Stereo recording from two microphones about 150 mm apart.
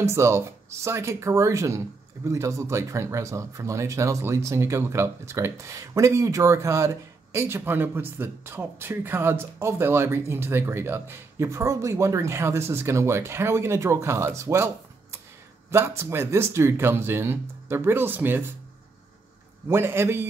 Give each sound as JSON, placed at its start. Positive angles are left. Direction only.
{"t": 0.0, "sound": "speech", "side_deg": -20}
{"t": 19.7, "sound": "speech", "side_deg": -15}